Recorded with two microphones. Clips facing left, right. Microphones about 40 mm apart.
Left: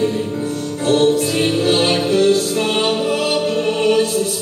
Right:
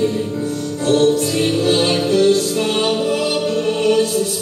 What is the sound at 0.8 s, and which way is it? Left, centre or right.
Music, centre.